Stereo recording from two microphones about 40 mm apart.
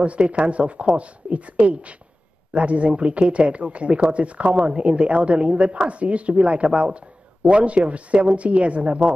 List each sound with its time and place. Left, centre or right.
0.0 s speech: right